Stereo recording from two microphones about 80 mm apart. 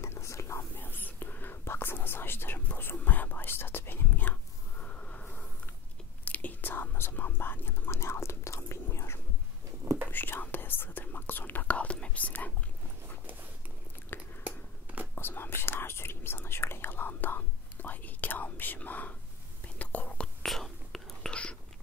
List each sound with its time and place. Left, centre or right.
0.0 s whispering: left; by 12.5 s centre
14.1 s a sound: left
15.1 s whispering: left
20.4 s whispering: centre